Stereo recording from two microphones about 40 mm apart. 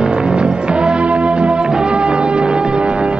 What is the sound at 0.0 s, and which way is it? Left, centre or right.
Music, right.